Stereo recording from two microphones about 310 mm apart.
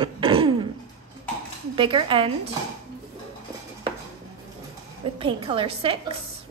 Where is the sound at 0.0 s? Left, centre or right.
Centre.